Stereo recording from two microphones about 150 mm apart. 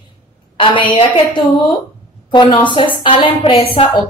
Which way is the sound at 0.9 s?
35° left (ahead or behind).